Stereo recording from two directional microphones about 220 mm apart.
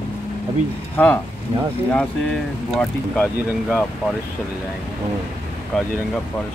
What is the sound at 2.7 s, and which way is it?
Speech, 5° left (ahead or behind).